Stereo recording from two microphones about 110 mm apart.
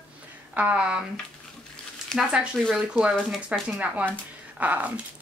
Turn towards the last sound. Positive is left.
turn(degrees=-15)  # may be behind; listen again after turning